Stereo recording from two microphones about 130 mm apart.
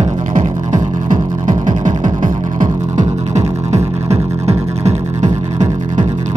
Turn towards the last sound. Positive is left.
turn(degrees=-65)  # may be behind; listen again after turning